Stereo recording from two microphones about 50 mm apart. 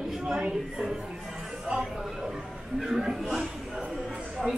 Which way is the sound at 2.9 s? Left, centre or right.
Centre.